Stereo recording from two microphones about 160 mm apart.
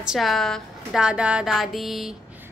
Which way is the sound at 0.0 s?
Centre (ahead or behind).